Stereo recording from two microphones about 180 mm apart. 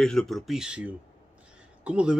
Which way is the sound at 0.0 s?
5° left (ahead or behind).